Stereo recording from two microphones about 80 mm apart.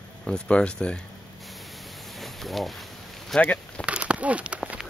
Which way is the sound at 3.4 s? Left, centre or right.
Centre.